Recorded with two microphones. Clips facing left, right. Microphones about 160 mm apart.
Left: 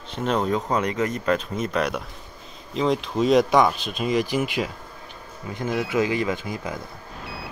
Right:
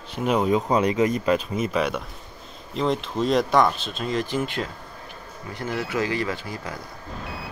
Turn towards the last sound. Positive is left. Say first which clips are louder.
# left 3 dB
turn(degrees=20)  # may be behind; listen again after turning